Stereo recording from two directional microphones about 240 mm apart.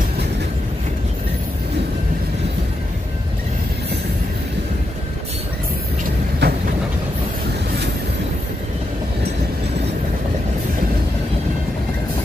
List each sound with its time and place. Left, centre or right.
6.4 s train: right